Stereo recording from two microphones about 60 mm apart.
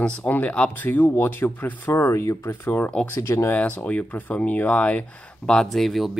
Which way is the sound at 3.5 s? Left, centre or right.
Left.